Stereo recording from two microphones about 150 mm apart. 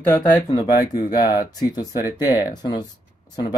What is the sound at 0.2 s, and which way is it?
Speech, 25° left (ahead or behind).